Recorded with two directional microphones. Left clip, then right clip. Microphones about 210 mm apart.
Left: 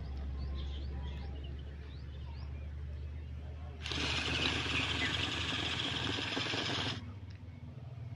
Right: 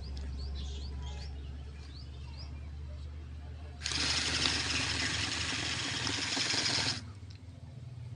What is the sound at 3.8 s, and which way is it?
Sewing machine, 10° right (ahead or behind).